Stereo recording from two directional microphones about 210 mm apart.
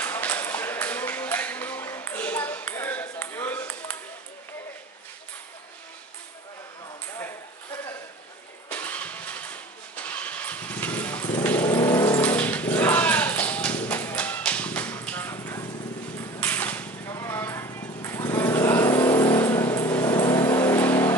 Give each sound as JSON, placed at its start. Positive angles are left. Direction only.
{"t": 0.0, "sound": "ping", "side_deg": 10}
{"t": 7.2, "sound": "ping", "side_deg": 10}
{"t": 8.6, "sound": "engine starting", "side_deg": 10}
{"t": 16.3, "sound": "a sound", "side_deg": 10}
{"t": 19.0, "sound": "vehicle", "side_deg": 10}